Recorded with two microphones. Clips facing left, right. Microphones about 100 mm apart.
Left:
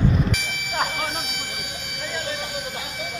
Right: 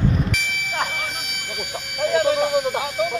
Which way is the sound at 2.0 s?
80° right.